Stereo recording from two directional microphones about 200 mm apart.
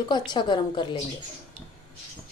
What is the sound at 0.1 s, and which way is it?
Speech, 20° left (ahead or behind).